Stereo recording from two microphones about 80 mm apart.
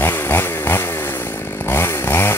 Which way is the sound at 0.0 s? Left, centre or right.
Left.